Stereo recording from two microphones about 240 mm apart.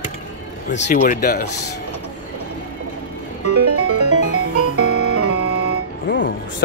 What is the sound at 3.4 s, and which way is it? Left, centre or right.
Music, right.